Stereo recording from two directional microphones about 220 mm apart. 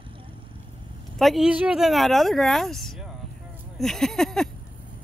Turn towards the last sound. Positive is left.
turn(degrees=0)  # may be behind; listen again after turning